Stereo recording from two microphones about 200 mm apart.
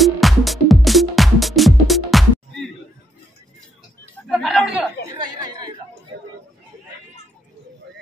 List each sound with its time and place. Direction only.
0.0 s music: centre (ahead or behind)
4.3 s a sound: centre (ahead or behind)
5.0 s chatter: 20° right (ahead or behind)